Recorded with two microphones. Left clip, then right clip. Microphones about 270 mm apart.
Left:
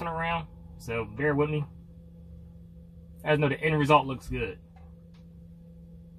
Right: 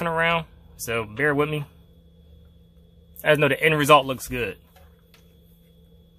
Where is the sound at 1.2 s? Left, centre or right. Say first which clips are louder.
Right 5 dB; right.